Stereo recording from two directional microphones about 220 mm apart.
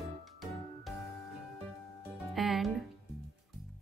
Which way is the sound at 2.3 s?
Centre (ahead or behind).